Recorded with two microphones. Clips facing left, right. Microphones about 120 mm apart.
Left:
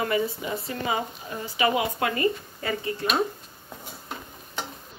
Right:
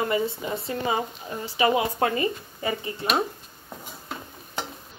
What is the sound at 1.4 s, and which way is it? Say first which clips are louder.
Speech: right 2 dB; 30° right (ahead or behind).